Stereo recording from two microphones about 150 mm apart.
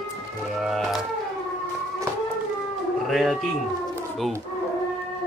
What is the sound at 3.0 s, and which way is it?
Speech, centre (ahead or behind).